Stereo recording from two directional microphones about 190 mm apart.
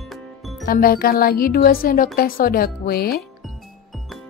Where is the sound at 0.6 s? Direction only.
50° left (ahead or behind).